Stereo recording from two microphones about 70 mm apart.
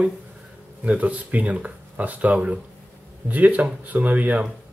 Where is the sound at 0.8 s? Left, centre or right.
Centre.